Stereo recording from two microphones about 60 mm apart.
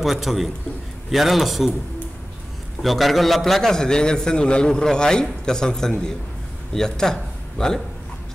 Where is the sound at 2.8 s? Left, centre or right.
Centre.